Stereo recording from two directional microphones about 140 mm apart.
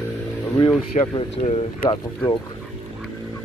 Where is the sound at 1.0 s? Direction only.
50° left (ahead or behind).